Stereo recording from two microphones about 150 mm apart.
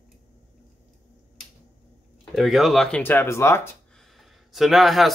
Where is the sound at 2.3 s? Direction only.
Centre (ahead or behind).